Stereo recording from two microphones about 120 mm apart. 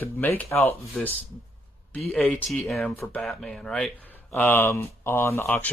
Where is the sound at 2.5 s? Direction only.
5° left (ahead or behind).